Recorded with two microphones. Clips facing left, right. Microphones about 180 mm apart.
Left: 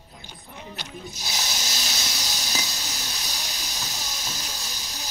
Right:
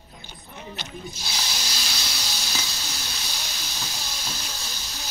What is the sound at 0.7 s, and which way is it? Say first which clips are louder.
Snake: right 1 dB; 20° left (ahead or behind).